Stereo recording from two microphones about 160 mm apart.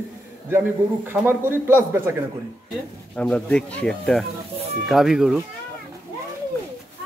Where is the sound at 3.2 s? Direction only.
5° left (ahead or behind).